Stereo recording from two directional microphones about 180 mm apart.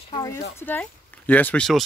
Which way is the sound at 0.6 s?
10° left (ahead or behind).